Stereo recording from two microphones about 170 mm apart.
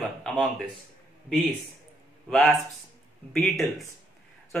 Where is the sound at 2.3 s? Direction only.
5° left (ahead or behind).